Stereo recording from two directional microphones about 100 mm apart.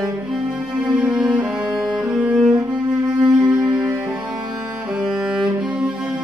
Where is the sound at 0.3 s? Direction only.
10° right (ahead or behind).